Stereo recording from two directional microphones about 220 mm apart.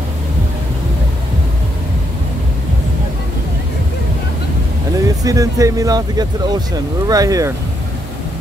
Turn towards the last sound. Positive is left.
turn(degrees=-15)  # may be behind; listen again after turning